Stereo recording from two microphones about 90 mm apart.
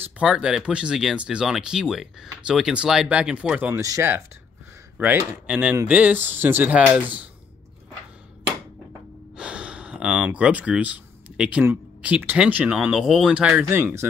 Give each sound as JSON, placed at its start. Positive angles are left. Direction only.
{"t": 0.2, "sound": "speech", "side_deg": -10}
{"t": 3.8, "sound": "speech", "side_deg": -40}
{"t": 4.9, "sound": "speech", "side_deg": -20}
{"t": 9.4, "sound": "a sound", "side_deg": -10}
{"t": 11.6, "sound": "speech", "side_deg": -15}
{"t": 13.7, "sound": "speech", "side_deg": -30}